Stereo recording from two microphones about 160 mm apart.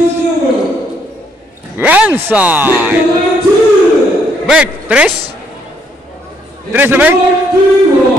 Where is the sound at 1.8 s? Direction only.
10° right (ahead or behind).